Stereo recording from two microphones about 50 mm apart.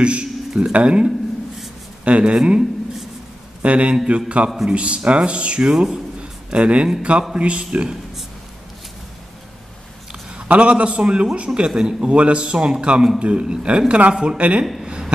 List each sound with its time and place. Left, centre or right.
0.0 s a man's voice: right
3.6 s speech: right
10.5 s speech: right